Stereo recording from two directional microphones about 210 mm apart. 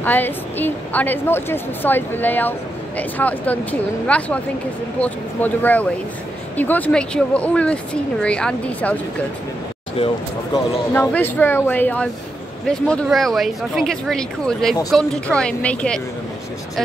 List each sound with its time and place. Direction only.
0.0 s a woman's voice: 10° left (ahead or behind)
9.9 s speech: 25° left (ahead or behind)
10.9 s a woman's voice: 10° left (ahead or behind)